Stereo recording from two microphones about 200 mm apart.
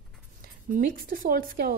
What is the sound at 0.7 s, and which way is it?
A woman's voice, 45° right (ahead or behind).